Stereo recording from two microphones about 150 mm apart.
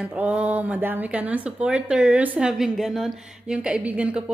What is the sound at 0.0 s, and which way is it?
Speech, 5° right (ahead or behind).